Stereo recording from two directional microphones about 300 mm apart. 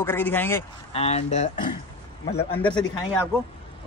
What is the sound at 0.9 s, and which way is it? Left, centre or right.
Speech, left.